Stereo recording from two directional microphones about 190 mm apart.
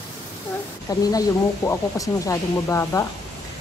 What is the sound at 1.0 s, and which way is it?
Speech, 20° left (ahead or behind).